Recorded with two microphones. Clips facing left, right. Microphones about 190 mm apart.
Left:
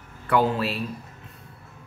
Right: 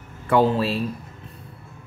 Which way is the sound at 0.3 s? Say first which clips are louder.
Right 3 dB; 30° right (ahead or behind).